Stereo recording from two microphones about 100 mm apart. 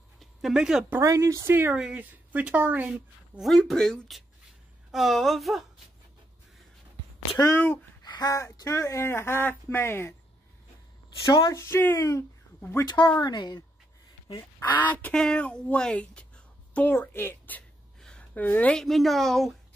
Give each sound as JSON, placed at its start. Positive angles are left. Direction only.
{"t": 0.2, "sound": "a sound", "side_deg": -5}
{"t": 1.0, "sound": "speech", "side_deg": -35}
{"t": 1.8, "sound": "speech", "side_deg": -10}
{"t": 3.3, "sound": "a woman's voice", "side_deg": 0}
{"t": 7.4, "sound": "speech", "side_deg": 20}
{"t": 8.0, "sound": "a sound", "side_deg": 40}
{"t": 8.5, "sound": "speech", "side_deg": 30}
{"t": 11.2, "sound": "speech", "side_deg": 55}
{"t": 11.5, "sound": "speech", "side_deg": 25}
{"t": 12.5, "sound": "a sound", "side_deg": 25}
{"t": 12.8, "sound": "speech", "side_deg": 50}
{"t": 14.7, "sound": "a woman's voice", "side_deg": 15}
{"t": 18.0, "sound": "a sound", "side_deg": 10}
{"t": 18.4, "sound": "a woman's voice", "side_deg": 15}